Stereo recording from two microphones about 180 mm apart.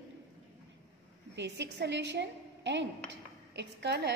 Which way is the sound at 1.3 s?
75° right (ahead or behind).